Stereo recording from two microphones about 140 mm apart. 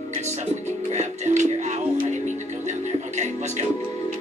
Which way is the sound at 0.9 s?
55° right (ahead or behind).